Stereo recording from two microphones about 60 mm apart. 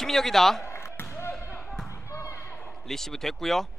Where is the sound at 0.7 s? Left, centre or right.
Left.